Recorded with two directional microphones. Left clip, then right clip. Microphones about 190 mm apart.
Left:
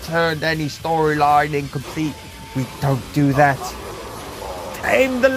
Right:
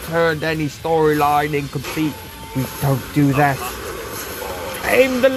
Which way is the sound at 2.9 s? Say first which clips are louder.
Right 1 dB; 15° right (ahead or behind).